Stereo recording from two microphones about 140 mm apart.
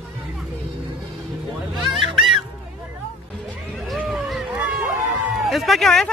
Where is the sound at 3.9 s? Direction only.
Centre (ahead or behind).